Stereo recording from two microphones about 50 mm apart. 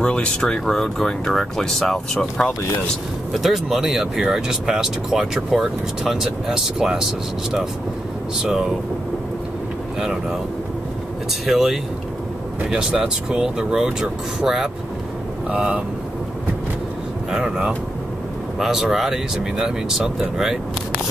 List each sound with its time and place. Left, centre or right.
0.0 s speech: centre
2.1 s speech: left
3.3 s speech: centre
8.4 s speech: centre
11.4 s speech: centre
15.5 s speech: right
17.3 s speech: centre